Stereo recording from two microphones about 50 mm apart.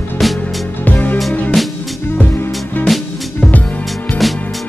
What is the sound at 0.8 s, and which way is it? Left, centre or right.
Music, left.